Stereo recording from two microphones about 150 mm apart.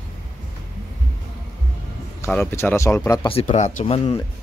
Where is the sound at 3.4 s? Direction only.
50° left (ahead or behind).